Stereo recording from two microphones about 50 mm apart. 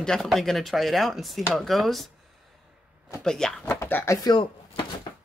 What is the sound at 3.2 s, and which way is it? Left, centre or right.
Speech, centre.